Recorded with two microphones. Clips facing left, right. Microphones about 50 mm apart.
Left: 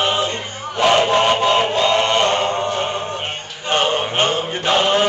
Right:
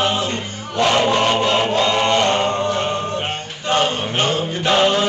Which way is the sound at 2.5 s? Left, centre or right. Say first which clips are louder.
Right 1 dB; centre.